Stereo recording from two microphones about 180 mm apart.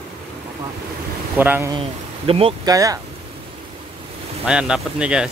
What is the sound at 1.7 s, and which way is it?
Speech, 35° right (ahead or behind).